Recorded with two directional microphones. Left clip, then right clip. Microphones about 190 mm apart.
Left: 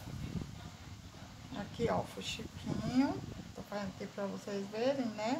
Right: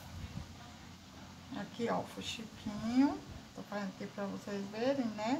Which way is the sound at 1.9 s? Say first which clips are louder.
Right 1 dB; 25° left (ahead or behind).